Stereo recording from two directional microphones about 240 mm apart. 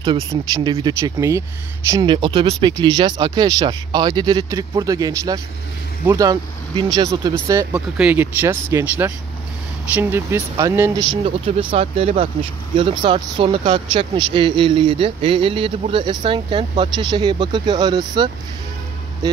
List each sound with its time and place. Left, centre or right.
0.0 s speech: centre